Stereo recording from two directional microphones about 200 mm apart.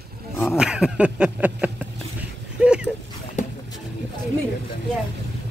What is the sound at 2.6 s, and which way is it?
Dog, 5° right (ahead or behind).